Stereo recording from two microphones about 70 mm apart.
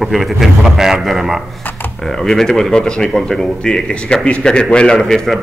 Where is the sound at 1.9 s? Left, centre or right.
Centre.